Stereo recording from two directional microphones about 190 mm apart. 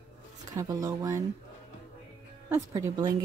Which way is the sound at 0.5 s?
20° right (ahead or behind).